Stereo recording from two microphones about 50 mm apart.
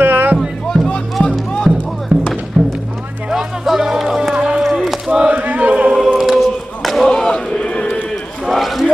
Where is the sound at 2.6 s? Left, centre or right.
Centre.